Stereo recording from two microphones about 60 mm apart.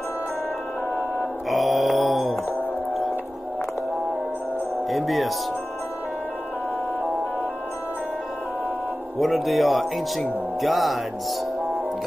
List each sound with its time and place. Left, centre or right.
1.5 s mantra: centre
4.8 s music: centre
9.2 s a man's voice: centre